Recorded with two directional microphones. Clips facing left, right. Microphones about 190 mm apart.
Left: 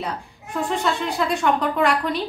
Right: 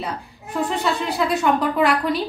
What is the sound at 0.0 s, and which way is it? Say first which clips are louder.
Speech: even; centre (ahead or behind).